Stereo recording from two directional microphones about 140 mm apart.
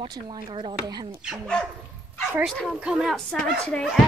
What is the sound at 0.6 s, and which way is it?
Speech, 30° right (ahead or behind).